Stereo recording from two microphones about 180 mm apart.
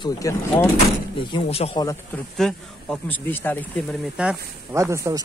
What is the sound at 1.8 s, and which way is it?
Speech, 15° left (ahead or behind).